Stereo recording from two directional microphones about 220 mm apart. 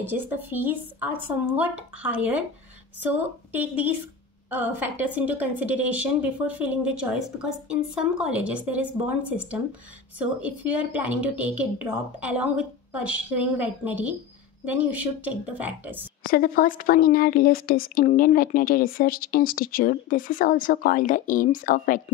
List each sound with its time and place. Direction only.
0.0 s a woman's voice: 10° right (ahead or behind)
16.3 s a woman's voice: 40° left (ahead or behind)